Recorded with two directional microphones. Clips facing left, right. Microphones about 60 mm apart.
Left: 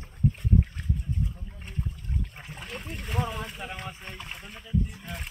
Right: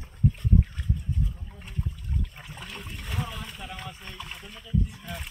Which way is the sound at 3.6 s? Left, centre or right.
Left.